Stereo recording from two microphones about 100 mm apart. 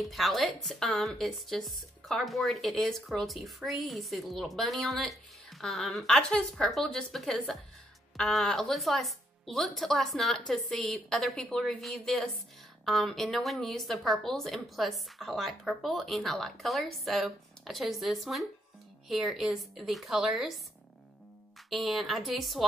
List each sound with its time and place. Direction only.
0.0 s speech: centre (ahead or behind)
21.6 s speech: centre (ahead or behind)